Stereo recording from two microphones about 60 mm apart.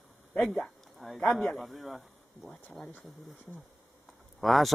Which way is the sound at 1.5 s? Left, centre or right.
Centre.